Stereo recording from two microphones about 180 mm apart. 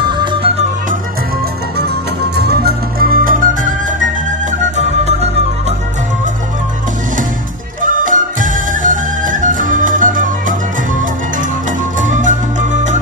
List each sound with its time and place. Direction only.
0.2 s music: 30° right (ahead or behind)
1.8 s music: 65° right (ahead or behind); by 5.8 s 40° right (ahead or behind)
7.8 s music: 45° right (ahead or behind)
12.0 s music: 45° right (ahead or behind)